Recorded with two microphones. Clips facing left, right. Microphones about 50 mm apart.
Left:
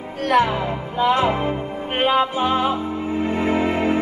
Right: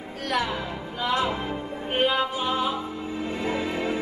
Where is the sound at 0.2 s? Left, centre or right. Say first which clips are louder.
Left 9 dB; left.